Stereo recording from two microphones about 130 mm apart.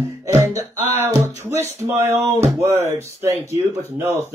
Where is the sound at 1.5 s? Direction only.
55° left (ahead or behind).